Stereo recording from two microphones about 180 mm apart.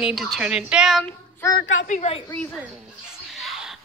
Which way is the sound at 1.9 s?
35° left (ahead or behind).